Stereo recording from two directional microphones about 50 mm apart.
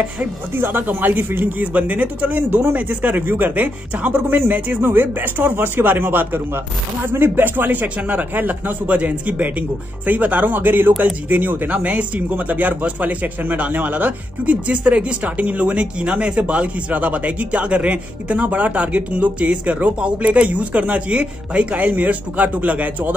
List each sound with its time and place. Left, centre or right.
0.2 s a man's voice: right